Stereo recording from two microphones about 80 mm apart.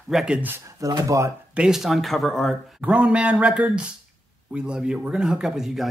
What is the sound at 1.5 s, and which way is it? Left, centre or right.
Speech, centre.